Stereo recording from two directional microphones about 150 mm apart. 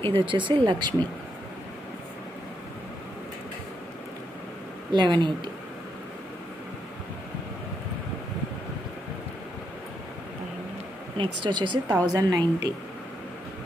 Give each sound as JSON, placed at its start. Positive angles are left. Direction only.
{"t": 0.0, "sound": "speech", "side_deg": -35}
{"t": 4.9, "sound": "speech", "side_deg": -30}
{"t": 11.1, "sound": "a woman's voice", "side_deg": -30}